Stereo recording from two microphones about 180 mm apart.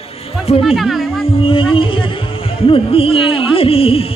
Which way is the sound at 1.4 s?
30° left (ahead or behind).